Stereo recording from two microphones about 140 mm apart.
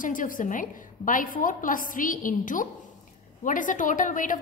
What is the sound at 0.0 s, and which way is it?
A woman's voice, 75° left (ahead or behind).